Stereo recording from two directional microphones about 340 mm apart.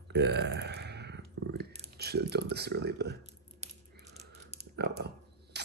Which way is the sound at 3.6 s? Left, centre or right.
Centre.